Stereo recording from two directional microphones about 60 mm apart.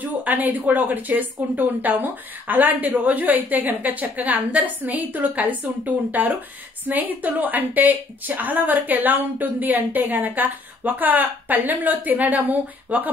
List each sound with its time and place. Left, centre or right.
0.0 s speech: right